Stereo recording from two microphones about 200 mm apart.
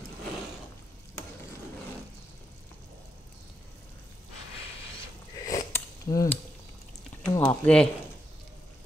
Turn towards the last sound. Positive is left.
turn(degrees=5)  # may be behind; listen again after turning